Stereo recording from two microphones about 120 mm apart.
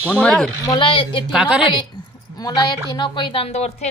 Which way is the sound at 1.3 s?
10° right (ahead or behind).